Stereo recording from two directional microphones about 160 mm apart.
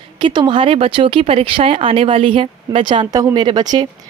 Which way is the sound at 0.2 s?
30° right (ahead or behind).